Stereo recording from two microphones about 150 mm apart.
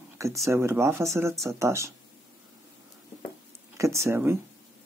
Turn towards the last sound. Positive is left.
turn(degrees=-15)  # may be behind; listen again after turning